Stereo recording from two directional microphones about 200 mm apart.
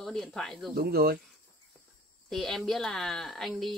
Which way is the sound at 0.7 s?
50° right (ahead or behind).